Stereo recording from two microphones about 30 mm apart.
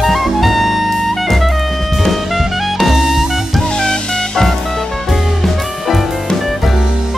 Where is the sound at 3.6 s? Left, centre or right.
Left.